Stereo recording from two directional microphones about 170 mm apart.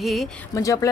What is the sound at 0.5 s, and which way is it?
Speech, 20° left (ahead or behind).